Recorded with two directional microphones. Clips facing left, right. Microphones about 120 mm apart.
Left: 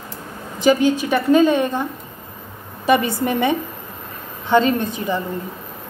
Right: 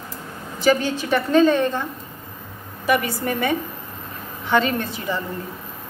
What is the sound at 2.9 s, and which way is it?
A woman's voice, 25° left (ahead or behind).